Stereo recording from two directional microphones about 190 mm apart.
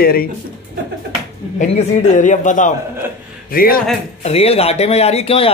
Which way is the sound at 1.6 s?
40° left (ahead or behind).